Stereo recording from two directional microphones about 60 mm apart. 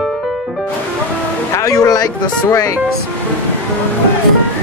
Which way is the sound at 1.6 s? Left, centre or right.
Left.